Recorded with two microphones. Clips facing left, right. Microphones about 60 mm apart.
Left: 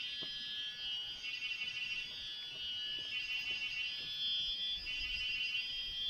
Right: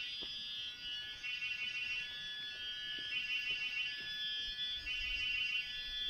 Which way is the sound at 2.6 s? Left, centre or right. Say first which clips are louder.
Left 5 dB; right.